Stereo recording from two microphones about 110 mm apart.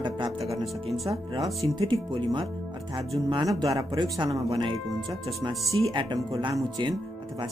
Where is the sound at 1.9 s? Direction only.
45° right (ahead or behind).